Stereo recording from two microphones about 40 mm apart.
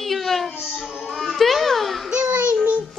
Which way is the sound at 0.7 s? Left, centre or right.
Centre.